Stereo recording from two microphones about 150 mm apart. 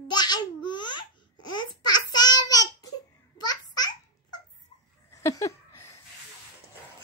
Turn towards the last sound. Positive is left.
turn(degrees=20)  # may be behind; listen again after turning